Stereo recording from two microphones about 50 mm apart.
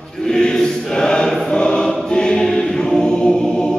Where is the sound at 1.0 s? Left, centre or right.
Centre.